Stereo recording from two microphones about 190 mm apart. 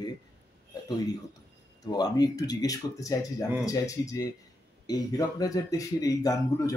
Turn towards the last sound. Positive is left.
turn(degrees=20)  # may be behind; listen again after turning